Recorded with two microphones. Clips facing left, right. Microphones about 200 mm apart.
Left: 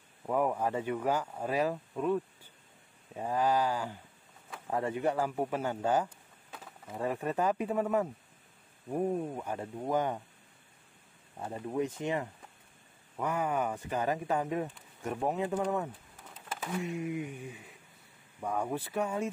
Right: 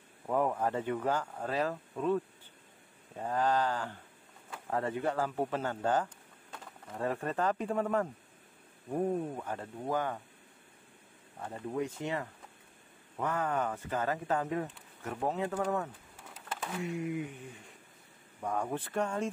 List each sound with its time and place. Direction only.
0.3 s speech: 5° left (ahead or behind)
11.3 s speech: 15° left (ahead or behind)
16.8 s a sound: 20° left (ahead or behind)
18.4 s speech: 10° left (ahead or behind)